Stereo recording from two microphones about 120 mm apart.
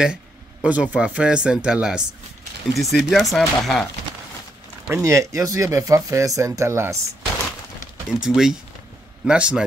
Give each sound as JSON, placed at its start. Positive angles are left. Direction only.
{"t": 0.0, "sound": "speech", "side_deg": -5}
{"t": 5.0, "sound": "speech", "side_deg": -25}
{"t": 8.1, "sound": "a man's voice", "side_deg": -5}